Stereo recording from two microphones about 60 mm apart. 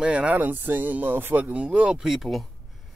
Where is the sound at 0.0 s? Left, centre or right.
Centre.